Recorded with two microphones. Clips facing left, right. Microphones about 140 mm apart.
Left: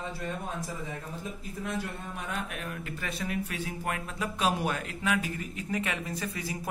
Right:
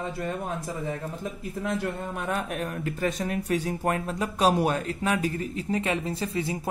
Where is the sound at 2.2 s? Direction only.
50° right (ahead or behind).